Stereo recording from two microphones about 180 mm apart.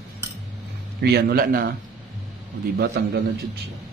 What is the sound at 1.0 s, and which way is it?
Speech, 60° right (ahead or behind).